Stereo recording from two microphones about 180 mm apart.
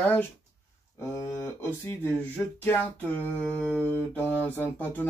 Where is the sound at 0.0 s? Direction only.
10° left (ahead or behind).